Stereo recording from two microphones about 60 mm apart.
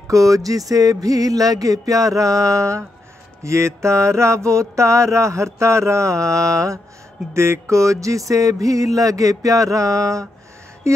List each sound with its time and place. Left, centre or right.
0.1 s music: right
3.4 s mantra: right
7.3 s music: right